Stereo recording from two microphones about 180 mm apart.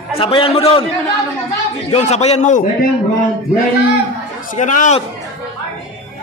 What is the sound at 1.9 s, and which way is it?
Speech, 35° left (ahead or behind).